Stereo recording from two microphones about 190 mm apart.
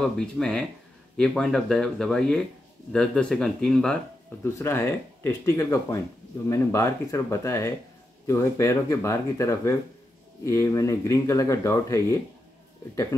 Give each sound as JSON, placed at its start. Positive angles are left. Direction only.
{"t": 0.2, "sound": "speech", "side_deg": 0}